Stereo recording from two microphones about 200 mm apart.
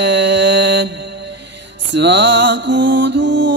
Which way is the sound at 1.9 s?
60° right (ahead or behind).